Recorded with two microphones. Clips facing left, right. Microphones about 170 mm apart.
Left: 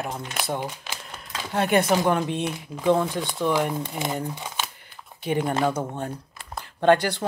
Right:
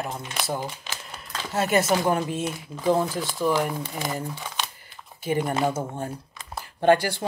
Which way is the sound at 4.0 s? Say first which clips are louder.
Left 2 dB; 20° left (ahead or behind).